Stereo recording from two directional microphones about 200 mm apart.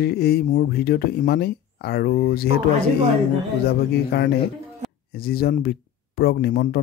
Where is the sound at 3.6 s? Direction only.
50° left (ahead or behind).